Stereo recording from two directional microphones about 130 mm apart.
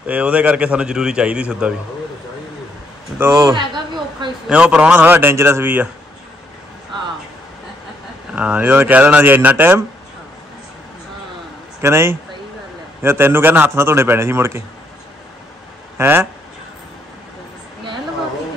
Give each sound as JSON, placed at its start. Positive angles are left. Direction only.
{"t": 0.0, "sound": "a man's voice", "side_deg": -10}
{"t": 3.2, "sound": "a man's voice", "side_deg": -20}
{"t": 3.5, "sound": "a sound", "side_deg": -35}
{"t": 4.5, "sound": "a man's voice", "side_deg": -5}
{"t": 8.4, "sound": "a man's voice", "side_deg": -10}
{"t": 11.8, "sound": "a man's voice", "side_deg": -20}
{"t": 16.0, "sound": "a man's voice", "side_deg": -20}